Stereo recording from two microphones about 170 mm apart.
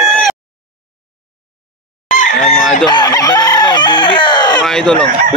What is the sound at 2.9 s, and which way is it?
Chicken, 20° left (ahead or behind).